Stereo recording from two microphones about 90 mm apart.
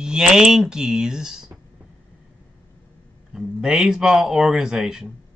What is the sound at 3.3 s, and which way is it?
Speech, 5° right (ahead or behind).